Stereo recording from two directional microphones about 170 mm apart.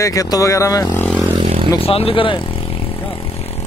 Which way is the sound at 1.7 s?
35° left (ahead or behind).